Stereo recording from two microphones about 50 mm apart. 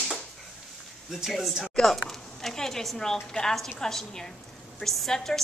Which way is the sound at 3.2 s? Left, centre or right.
Centre.